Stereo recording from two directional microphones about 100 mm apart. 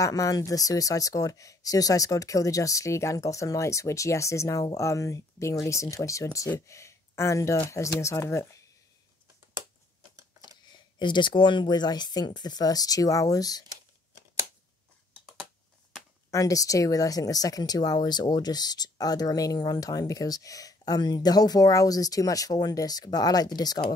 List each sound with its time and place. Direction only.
0.0 s speech: 35° left (ahead or behind)
10.1 s typing: 35° right (ahead or behind)
11.0 s speech: 50° left (ahead or behind)
16.3 s speech: 35° left (ahead or behind)